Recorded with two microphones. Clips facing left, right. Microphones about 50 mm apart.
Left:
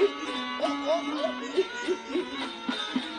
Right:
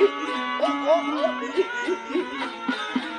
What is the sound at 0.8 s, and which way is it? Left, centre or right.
Music, right.